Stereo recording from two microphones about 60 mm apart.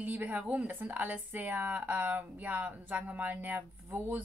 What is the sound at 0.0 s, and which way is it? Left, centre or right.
Speech, right.